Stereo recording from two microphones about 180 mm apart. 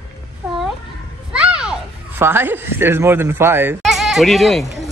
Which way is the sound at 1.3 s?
5° right (ahead or behind).